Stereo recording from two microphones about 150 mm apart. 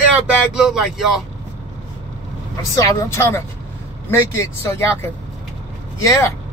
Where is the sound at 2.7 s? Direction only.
20° left (ahead or behind).